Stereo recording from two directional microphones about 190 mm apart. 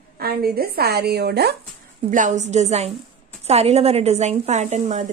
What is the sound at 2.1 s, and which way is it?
Speech, 40° right (ahead or behind).